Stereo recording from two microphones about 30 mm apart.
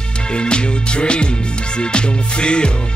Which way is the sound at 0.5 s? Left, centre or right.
Left.